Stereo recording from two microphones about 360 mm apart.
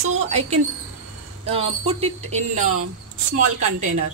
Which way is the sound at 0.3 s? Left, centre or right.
Centre.